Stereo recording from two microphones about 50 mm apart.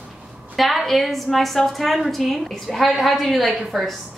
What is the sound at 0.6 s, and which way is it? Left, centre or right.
A woman's voice, centre.